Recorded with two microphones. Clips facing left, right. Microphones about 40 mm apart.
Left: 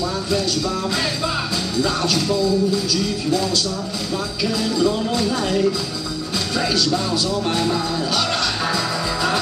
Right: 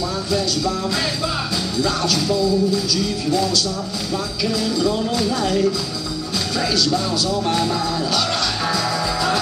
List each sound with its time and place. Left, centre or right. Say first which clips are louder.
0.3 s music: right 1 dB; centre
4.4 s music: left 1 dB; centre
7.4 s music: right 1 dB; centre
8.1 s music: even; centre